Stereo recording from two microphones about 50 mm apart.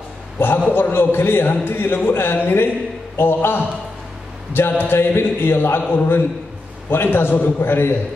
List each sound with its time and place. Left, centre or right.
0.4 s a man's voice: left